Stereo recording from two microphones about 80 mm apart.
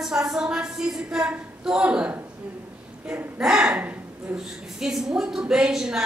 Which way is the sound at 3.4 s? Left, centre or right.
Centre.